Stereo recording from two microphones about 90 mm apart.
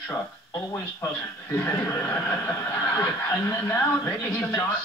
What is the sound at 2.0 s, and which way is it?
Speech, 20° left (ahead or behind).